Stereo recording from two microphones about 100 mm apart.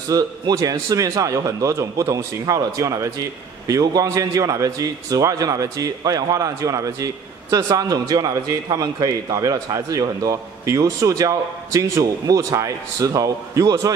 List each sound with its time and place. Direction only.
0.1 s a man's voice: 40° right (ahead or behind)